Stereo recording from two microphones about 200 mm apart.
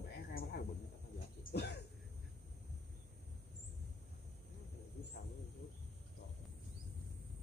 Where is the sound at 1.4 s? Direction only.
50° left (ahead or behind).